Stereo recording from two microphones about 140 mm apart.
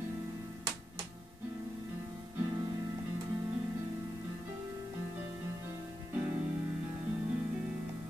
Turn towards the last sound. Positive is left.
turn(degrees=-20)  # may be behind; listen again after turning